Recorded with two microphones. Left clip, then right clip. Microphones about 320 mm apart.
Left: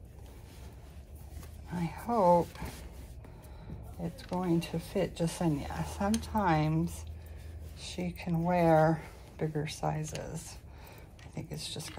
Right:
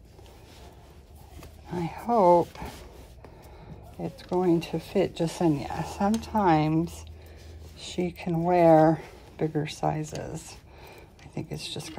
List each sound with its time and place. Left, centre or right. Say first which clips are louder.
1.7 s speech: right 7 dB; right
4.0 s speech: right 9 dB; right